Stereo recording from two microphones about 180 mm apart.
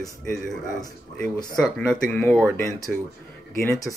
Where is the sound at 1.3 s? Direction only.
20° left (ahead or behind).